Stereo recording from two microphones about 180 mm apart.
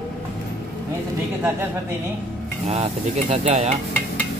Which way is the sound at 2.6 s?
35° right (ahead or behind).